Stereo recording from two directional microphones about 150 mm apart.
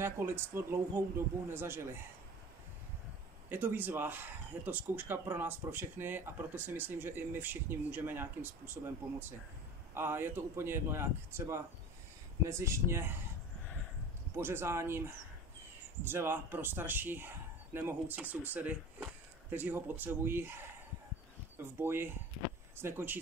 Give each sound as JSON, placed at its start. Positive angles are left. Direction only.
{"t": 0.0, "sound": "speech", "side_deg": -15}
{"t": 3.4, "sound": "speech", "side_deg": -10}
{"t": 9.9, "sound": "speech", "side_deg": -15}
{"t": 14.3, "sound": "speech", "side_deg": -15}
{"t": 21.7, "sound": "speech", "side_deg": -15}